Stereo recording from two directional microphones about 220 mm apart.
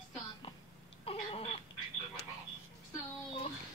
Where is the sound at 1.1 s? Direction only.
25° left (ahead or behind).